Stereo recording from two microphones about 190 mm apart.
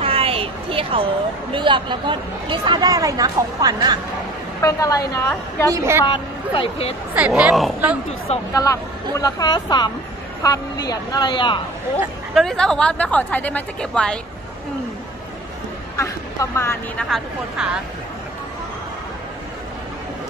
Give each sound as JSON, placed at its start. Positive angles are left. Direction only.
{"t": 0.0, "sound": "a sound", "side_deg": -30}
{"t": 1.5, "sound": "a woman's voice", "side_deg": -25}
{"t": 4.6, "sound": "a woman's voice", "side_deg": 15}
{"t": 5.7, "sound": "a woman's voice", "side_deg": -15}
{"t": 6.0, "sound": "speech", "side_deg": 25}
{"t": 7.2, "sound": "a woman's voice", "side_deg": -5}
{"t": 8.5, "sound": "speech", "side_deg": 20}
{"t": 12.4, "sound": "a woman's voice", "side_deg": 5}
{"t": 16.0, "sound": "speech", "side_deg": 15}